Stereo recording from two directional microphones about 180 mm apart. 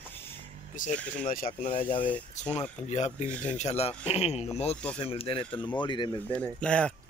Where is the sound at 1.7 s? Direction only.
30° left (ahead or behind).